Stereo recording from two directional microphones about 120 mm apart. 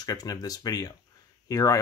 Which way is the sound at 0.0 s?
30° left (ahead or behind).